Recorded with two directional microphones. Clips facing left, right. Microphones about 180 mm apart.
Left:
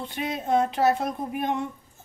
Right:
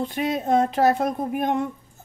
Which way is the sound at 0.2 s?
45° right (ahead or behind).